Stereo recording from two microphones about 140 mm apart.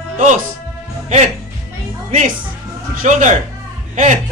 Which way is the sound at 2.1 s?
70° right (ahead or behind).